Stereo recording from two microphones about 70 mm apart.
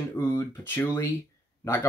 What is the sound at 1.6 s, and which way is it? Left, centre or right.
Speech, left.